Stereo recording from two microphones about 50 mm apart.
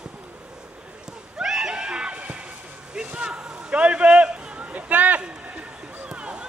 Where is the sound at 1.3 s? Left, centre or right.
Centre; by 2.4 s right.